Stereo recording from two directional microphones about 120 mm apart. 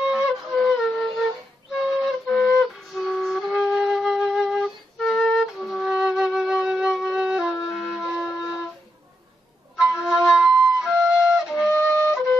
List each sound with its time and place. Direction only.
0.0 s wind instrument: 5° right (ahead or behind)
1.8 s flute: centre (ahead or behind)
9.8 s flute: 5° right (ahead or behind)
11.7 s flute: 20° left (ahead or behind)